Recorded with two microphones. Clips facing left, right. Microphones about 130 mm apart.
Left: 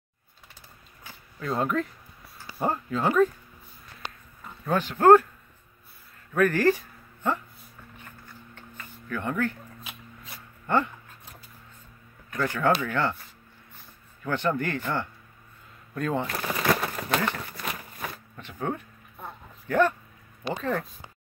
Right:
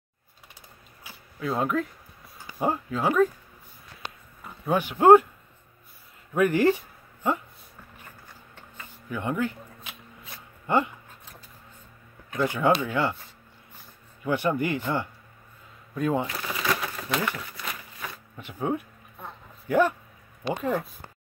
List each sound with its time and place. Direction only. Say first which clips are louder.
1.0 s a sound: right 2 dB; 5° right (ahead or behind)
2.6 s speech: even; 10° right (ahead or behind)
4.6 s speech: right 1 dB; 15° right (ahead or behind)
6.3 s speech: right 1 dB; 15° right (ahead or behind)
8.7 s a sound: even; 15° right (ahead or behind)
9.8 s shuffling cards: left 1 dB; centre (ahead or behind)
10.7 s speech: right 1 dB; 15° right (ahead or behind)
12.3 s speech: right 2 dB; 15° right (ahead or behind)
14.2 s speech: right 2 dB; 10° right (ahead or behind)
16.3 s a sound: left 3 dB; 45° left (ahead or behind)
18.3 s speech: right 4 dB; 15° right (ahead or behind)